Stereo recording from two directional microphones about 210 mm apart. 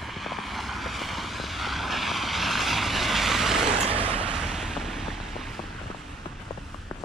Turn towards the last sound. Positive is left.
turn(degrees=0)  # may be behind; listen again after turning